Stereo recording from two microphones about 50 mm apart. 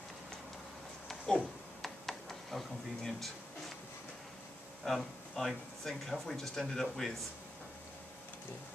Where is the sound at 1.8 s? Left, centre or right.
Centre.